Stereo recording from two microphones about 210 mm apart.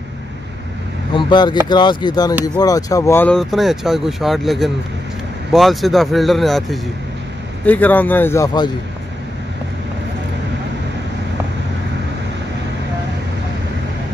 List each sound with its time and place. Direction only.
1.1 s speech: 20° left (ahead or behind)